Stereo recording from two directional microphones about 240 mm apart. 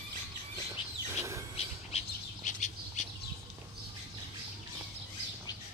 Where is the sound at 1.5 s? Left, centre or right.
Left.